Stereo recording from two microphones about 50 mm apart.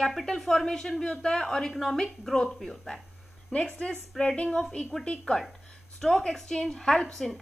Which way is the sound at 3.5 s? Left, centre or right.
Centre.